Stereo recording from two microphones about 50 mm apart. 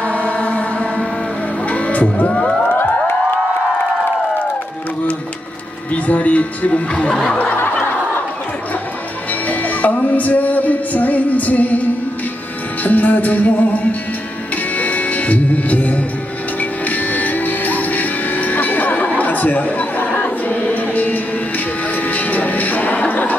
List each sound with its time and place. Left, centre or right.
0.0 s chant: left
1.7 s music: left
2.7 s music: left
6.0 s speech: left
7.1 s snicker: centre
9.3 s music: left